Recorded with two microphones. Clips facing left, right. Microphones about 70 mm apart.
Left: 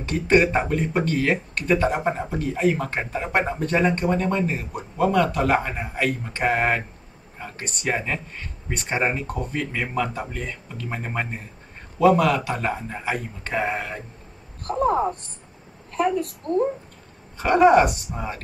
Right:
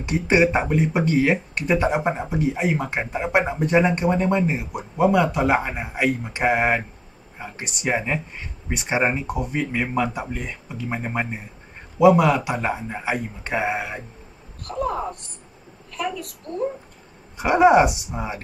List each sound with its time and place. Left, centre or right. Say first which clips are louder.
0.0 s speech: even; centre
14.6 s a sound: left 5 dB; left
15.9 s a woman's voice: left 6 dB; left
17.4 s speech: even; centre